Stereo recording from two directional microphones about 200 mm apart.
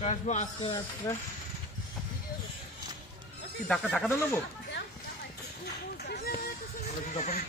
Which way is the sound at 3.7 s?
5° left (ahead or behind).